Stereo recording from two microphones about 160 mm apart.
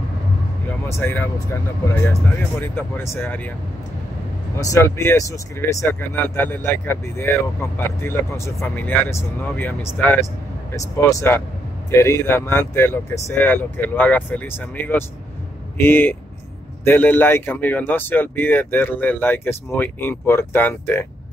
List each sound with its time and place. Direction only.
0.8 s speech: 15° left (ahead or behind)
2.6 s speech: 15° left (ahead or behind)
4.6 s speech: 20° left (ahead or behind)